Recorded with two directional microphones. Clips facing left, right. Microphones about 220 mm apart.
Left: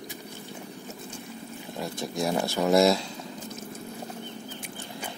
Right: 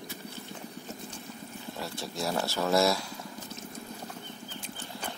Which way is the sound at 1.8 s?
15° left (ahead or behind).